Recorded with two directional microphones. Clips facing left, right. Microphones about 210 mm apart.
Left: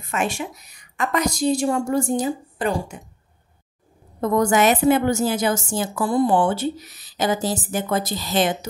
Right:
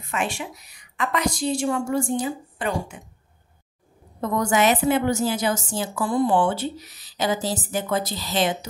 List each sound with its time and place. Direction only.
0.1 s a woman's voice: 45° left (ahead or behind)
4.2 s a woman's voice: 50° left (ahead or behind)